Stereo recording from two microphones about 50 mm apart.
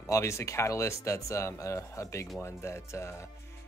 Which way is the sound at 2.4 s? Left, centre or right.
Left.